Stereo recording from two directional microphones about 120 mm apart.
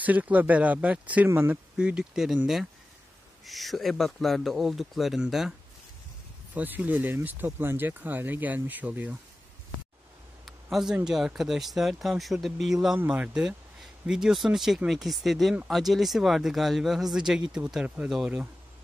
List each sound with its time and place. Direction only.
0.0 s speech: 15° right (ahead or behind)
1.8 s speech: 5° right (ahead or behind)
6.5 s speech: 15° right (ahead or behind)
10.4 s a sound: 5° right (ahead or behind)
11.1 s speech: 5° right (ahead or behind)